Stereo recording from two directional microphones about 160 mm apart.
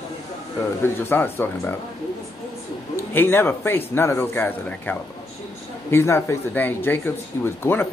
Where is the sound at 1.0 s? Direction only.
15° left (ahead or behind).